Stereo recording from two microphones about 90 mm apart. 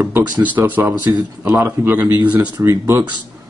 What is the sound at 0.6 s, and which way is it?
Speech, 20° right (ahead or behind).